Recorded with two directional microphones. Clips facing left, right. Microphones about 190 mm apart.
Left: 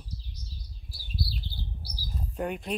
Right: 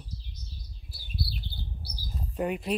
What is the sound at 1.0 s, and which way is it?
Bird, 55° right (ahead or behind).